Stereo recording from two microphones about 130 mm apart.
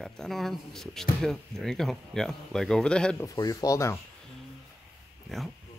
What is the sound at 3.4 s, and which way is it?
Speech, 30° left (ahead or behind).